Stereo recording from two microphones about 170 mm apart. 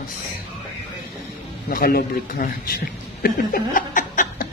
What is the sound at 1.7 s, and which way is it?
Speech, 60° left (ahead or behind).